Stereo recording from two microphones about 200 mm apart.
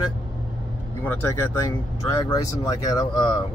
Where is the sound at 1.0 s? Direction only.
10° left (ahead or behind).